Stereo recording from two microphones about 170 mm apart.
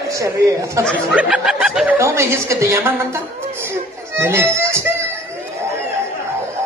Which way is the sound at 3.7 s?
15° right (ahead or behind).